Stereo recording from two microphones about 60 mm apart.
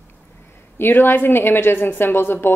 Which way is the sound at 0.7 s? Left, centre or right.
Left.